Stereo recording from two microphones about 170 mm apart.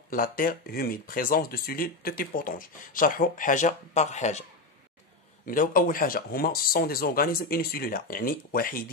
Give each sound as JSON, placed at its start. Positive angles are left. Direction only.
{"t": 0.1, "sound": "speech", "side_deg": 55}
{"t": 5.4, "sound": "speech", "side_deg": 55}